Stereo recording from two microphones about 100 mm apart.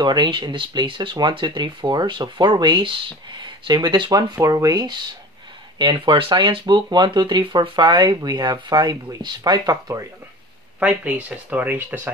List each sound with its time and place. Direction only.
0.0 s speech: 50° right (ahead or behind)
4.4 s speech: 35° right (ahead or behind)
5.8 s speech: 50° right (ahead or behind)
10.8 s speech: 15° right (ahead or behind)